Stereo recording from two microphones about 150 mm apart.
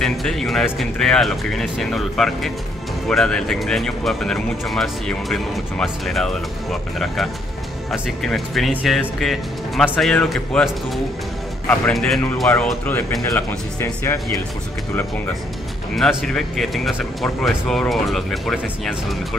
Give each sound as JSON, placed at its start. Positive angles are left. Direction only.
{"t": 0.0, "sound": "speech", "side_deg": 0}
{"t": 11.9, "sound": "speech", "side_deg": 0}
{"t": 16.0, "sound": "speech", "side_deg": 5}